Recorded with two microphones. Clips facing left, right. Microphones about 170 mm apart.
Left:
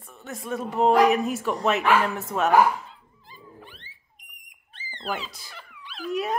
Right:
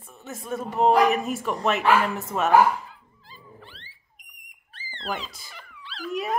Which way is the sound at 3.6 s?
15° left (ahead or behind).